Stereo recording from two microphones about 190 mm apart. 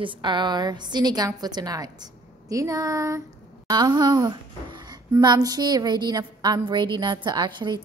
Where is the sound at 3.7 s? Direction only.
20° right (ahead or behind).